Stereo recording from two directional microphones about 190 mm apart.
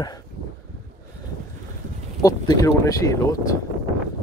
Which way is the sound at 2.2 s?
20° left (ahead or behind).